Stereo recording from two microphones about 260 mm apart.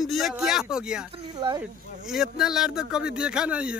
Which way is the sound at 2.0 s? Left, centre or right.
Centre.